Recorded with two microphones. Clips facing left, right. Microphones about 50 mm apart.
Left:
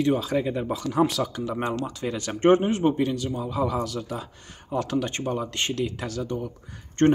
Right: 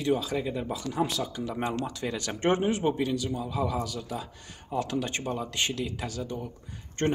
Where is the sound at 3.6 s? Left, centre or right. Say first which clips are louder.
Left 5 dB; left.